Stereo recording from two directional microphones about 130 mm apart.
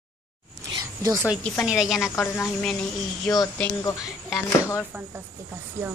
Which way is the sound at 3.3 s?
5° left (ahead or behind).